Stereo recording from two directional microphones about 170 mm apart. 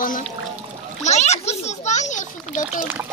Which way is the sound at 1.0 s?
40° left (ahead or behind).